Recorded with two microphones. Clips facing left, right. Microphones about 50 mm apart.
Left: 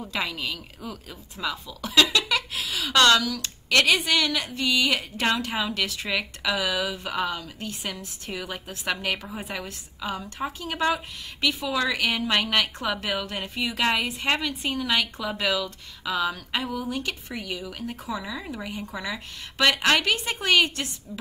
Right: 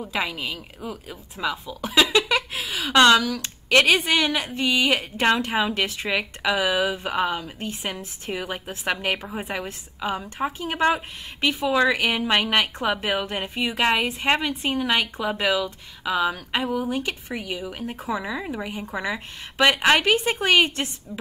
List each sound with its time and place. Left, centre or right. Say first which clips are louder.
0.0 s a woman's voice: right 2 dB; centre